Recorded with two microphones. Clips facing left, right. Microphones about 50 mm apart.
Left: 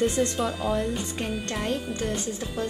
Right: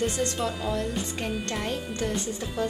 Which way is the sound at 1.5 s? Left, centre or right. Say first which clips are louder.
Left 2 dB; centre.